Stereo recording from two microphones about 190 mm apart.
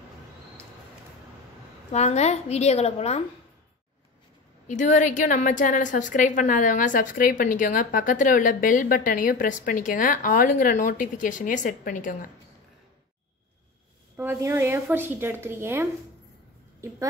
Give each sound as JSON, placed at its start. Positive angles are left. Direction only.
{"t": 1.9, "sound": "a woman's voice", "side_deg": 35}
{"t": 4.6, "sound": "a woman's voice", "side_deg": 40}
{"t": 14.1, "sound": "a woman's voice", "side_deg": -10}